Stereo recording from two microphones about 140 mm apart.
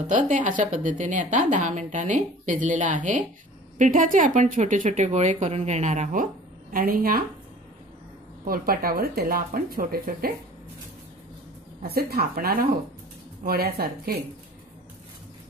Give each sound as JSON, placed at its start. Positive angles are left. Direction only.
{"t": 0.0, "sound": "a woman's voice", "side_deg": -65}
{"t": 6.7, "sound": "speech", "side_deg": -90}
{"t": 8.5, "sound": "speech", "side_deg": -90}
{"t": 11.8, "sound": "speech", "side_deg": -90}